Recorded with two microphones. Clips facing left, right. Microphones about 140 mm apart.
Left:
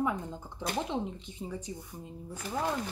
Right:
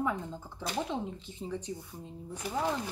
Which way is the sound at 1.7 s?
5° left (ahead or behind).